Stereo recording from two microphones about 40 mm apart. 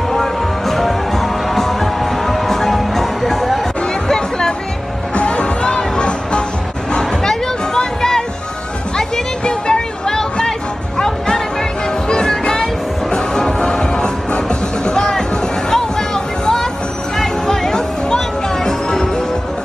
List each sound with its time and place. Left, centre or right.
0.1 s music: centre
4.1 s music: centre
8.9 s a sound: centre
11.0 s music: centre
15.7 s a sound: centre
17.2 s music: centre